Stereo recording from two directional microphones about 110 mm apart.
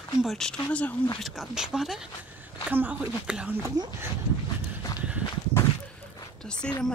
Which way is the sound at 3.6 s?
35° right (ahead or behind).